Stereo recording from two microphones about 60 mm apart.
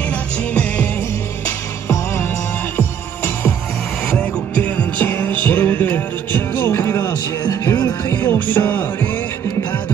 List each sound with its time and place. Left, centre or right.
4.6 s music: left
8.1 s music: left